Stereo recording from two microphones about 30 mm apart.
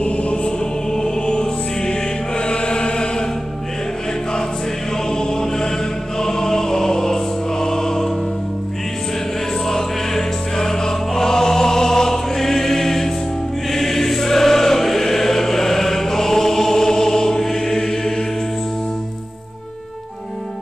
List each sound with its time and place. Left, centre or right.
0.0 s music: left
0.5 s music: centre
2.3 s chant: left
5.1 s chant: centre
6.1 s music: centre
9.7 s music: centre
13.7 s choir: centre